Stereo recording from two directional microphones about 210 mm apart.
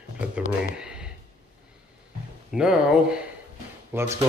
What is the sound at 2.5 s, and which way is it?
Speech, 5° right (ahead or behind).